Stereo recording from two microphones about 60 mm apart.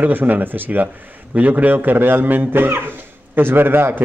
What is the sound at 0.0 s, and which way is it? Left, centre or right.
Speech, right.